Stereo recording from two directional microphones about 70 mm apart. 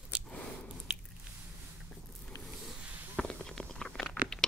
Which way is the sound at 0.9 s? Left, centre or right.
Centre.